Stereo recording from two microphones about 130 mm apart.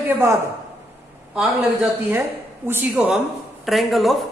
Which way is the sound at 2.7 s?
15° right (ahead or behind).